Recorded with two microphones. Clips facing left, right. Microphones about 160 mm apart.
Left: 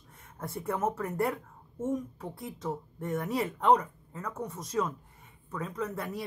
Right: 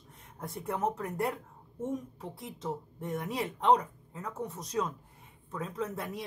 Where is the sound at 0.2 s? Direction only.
Centre (ahead or behind).